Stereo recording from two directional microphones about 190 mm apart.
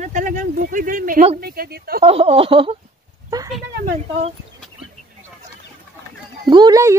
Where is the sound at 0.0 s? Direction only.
45° right (ahead or behind).